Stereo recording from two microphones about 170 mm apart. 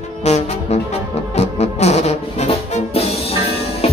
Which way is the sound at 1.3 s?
40° left (ahead or behind).